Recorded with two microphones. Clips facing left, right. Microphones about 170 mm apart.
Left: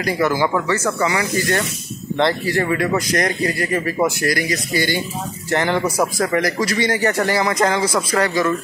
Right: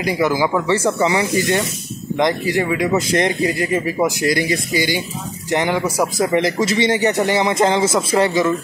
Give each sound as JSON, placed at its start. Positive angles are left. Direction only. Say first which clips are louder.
{"t": 0.0, "sound": "speech", "louder": "right 1 dB", "side_deg": -15}
{"t": 0.7, "sound": "speech", "louder": "right 3 dB", "side_deg": -25}
{"t": 2.9, "sound": "speech", "louder": "right 2 dB", "side_deg": -25}
{"t": 6.1, "sound": "speech", "louder": "right 2 dB", "side_deg": -25}